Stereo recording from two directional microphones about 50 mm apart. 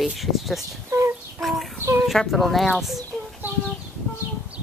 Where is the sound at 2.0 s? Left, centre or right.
Centre.